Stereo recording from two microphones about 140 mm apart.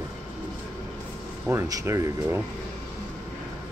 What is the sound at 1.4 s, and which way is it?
Speech, 20° right (ahead or behind).